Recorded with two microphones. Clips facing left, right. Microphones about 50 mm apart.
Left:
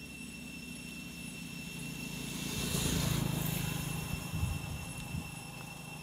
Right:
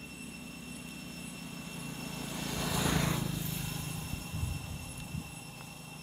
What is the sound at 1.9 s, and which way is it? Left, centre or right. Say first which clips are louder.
Vehicle: right 2 dB; right.